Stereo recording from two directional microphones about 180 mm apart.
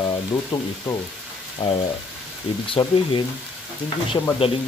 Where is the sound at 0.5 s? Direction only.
25° left (ahead or behind).